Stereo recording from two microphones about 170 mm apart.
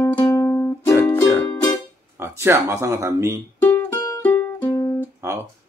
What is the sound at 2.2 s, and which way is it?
Speech, 15° right (ahead or behind).